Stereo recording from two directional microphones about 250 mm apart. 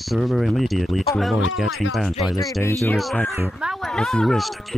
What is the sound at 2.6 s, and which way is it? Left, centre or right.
Speech, centre.